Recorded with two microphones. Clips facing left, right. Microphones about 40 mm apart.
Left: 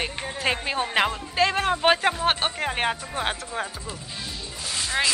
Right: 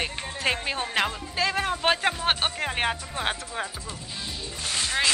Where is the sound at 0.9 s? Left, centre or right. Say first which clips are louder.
Left 4 dB; centre.